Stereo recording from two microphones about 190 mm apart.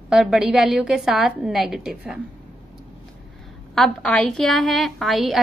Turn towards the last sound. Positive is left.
turn(degrees=0)  # may be behind; listen again after turning